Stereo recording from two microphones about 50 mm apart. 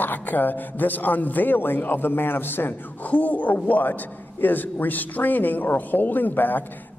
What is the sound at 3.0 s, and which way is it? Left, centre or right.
Speech, left.